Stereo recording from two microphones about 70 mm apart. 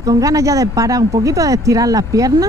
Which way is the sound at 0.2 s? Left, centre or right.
Right.